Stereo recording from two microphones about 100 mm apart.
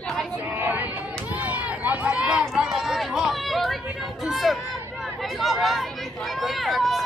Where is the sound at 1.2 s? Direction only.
15° right (ahead or behind).